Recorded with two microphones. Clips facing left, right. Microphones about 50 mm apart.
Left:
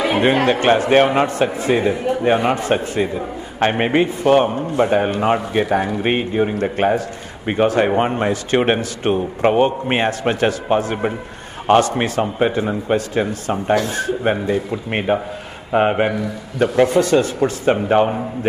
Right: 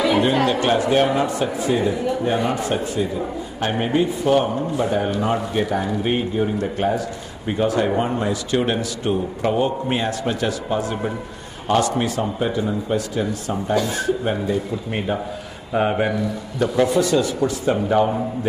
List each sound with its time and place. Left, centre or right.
0.0 s speech: left
5.6 s speech: left
6.0 s a man's voice: left
14.9 s speech: left